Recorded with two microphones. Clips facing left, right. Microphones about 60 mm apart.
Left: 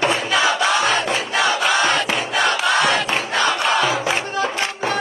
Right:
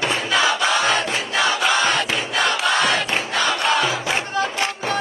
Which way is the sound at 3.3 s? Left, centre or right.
Left.